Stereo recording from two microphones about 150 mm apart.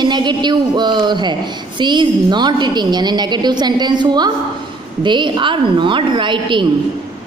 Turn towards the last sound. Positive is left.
turn(degrees=-30)  # may be behind; listen again after turning